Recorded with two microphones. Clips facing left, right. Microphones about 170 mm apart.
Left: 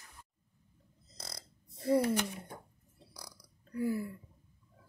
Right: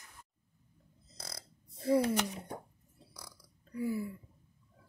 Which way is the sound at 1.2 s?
Centre (ahead or behind).